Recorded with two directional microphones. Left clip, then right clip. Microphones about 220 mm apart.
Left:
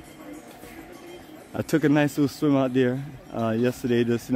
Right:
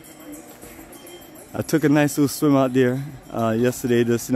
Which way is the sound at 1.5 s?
10° right (ahead or behind).